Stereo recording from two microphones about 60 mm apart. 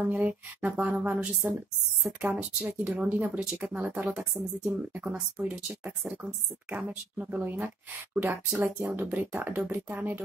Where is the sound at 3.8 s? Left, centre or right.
Right.